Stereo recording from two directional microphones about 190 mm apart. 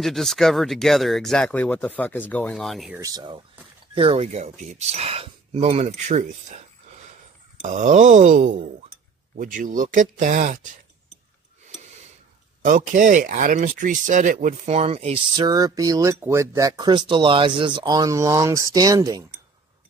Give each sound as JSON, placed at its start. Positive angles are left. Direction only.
{"t": 0.0, "sound": "speech", "side_deg": 0}
{"t": 3.0, "sound": "speech", "side_deg": -20}
{"t": 7.6, "sound": "speech", "side_deg": -40}
{"t": 12.6, "sound": "speech", "side_deg": -40}